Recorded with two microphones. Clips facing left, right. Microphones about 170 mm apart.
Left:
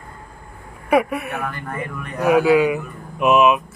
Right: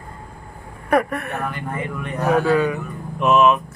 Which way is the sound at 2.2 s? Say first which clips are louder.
Left 3 dB; 10° left (ahead or behind).